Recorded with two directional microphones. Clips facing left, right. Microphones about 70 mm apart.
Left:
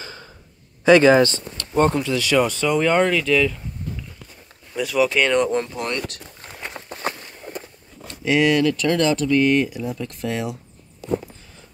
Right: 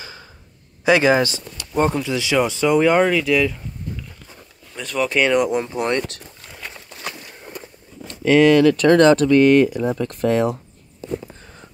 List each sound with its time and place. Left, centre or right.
0.0 s a sound: centre
0.8 s speech: centre
4.7 s speech: centre
5.9 s speech: right
6.4 s a sound: left
8.1 s speech: right